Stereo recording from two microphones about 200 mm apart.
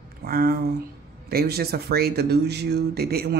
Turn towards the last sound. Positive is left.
turn(degrees=-50)  # may be behind; listen again after turning